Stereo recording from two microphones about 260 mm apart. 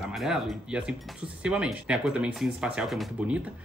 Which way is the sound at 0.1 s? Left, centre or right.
Centre.